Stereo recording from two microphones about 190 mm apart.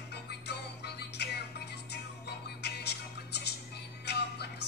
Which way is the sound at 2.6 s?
60° left (ahead or behind).